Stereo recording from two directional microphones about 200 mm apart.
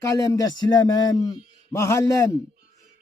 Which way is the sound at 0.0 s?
15° left (ahead or behind).